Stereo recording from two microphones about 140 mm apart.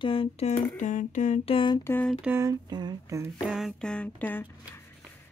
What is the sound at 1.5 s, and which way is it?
Speech, 35° left (ahead or behind).